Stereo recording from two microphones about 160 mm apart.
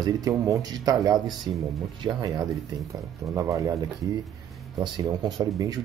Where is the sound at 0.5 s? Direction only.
20° right (ahead or behind).